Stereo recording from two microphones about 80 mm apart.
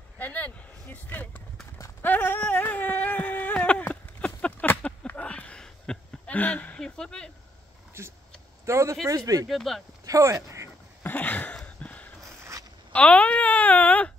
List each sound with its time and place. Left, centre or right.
0.2 s speech: left
2.0 s clip-clop: left
2.4 s a sound: left
8.0 s speech: right
9.5 s speech: centre
10.0 s speech: right
11.0 s a sound: left
12.4 s a sound: right
12.9 s speech: centre